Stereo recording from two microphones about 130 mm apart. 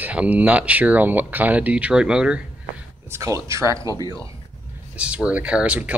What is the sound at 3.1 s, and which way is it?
Speech, 25° right (ahead or behind).